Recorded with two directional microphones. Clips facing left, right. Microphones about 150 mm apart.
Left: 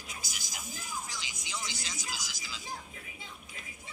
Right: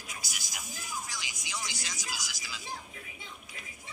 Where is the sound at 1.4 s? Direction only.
50° left (ahead or behind).